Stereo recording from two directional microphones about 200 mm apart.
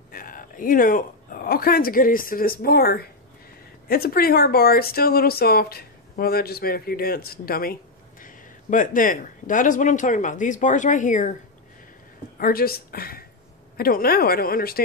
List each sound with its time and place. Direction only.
0.1 s speech: 45° left (ahead or behind)
12.4 s speech: 45° left (ahead or behind)